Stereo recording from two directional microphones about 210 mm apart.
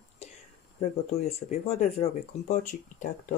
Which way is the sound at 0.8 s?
30° left (ahead or behind).